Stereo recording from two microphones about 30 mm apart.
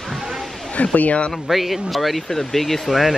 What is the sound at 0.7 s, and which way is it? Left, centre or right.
Speech, left.